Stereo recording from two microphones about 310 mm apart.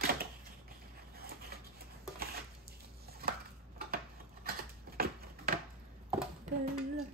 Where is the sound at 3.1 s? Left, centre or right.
Right.